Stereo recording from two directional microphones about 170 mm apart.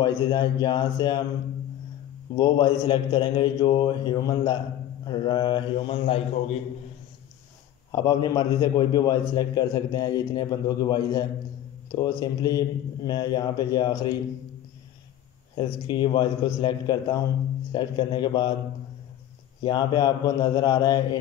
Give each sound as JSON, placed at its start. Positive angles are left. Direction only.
{"t": 0.0, "sound": "a man's voice", "side_deg": 25}
{"t": 2.3, "sound": "a man's voice", "side_deg": 25}
{"t": 7.9, "sound": "a man's voice", "side_deg": 25}
{"t": 15.5, "sound": "a man's voice", "side_deg": 30}
{"t": 19.6, "sound": "a man's voice", "side_deg": 25}